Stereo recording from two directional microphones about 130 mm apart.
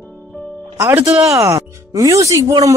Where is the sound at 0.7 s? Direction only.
15° right (ahead or behind).